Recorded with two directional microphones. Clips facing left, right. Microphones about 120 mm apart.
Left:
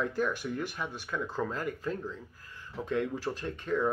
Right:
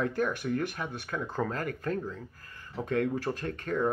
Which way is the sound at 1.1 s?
15° right (ahead or behind).